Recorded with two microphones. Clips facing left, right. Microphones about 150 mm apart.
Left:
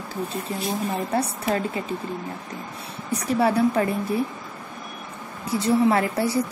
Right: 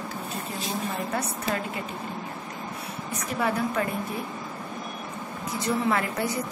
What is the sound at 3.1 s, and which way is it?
Speech, 35° left (ahead or behind).